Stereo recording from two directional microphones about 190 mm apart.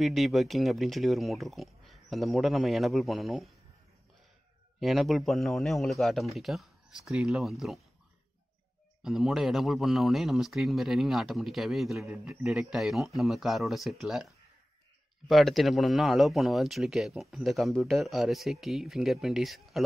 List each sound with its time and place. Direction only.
0.0 s speech: centre (ahead or behind)
4.7 s speech: centre (ahead or behind)
9.0 s speech: centre (ahead or behind)
15.2 s speech: centre (ahead or behind)